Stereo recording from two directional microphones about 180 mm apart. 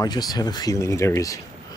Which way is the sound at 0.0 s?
20° left (ahead or behind).